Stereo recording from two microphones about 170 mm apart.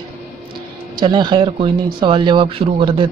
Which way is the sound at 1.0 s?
25° right (ahead or behind).